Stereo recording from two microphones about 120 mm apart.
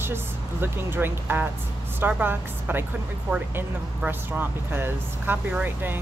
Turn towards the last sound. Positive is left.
turn(degrees=-15)  # may be behind; listen again after turning